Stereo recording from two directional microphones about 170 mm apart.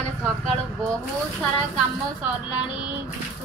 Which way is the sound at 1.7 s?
5° right (ahead or behind).